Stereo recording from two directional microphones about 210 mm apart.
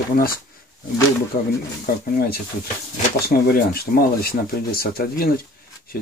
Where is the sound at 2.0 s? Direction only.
45° left (ahead or behind).